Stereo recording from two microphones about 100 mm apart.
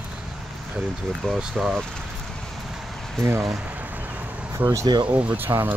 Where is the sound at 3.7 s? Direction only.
15° right (ahead or behind).